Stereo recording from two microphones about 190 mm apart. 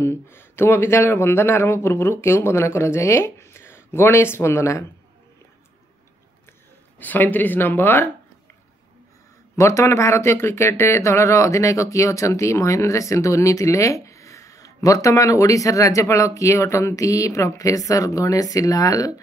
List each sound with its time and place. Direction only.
0.0 s speech: 10° left (ahead or behind)
7.0 s speech: 10° left (ahead or behind)
9.6 s speech: 15° left (ahead or behind)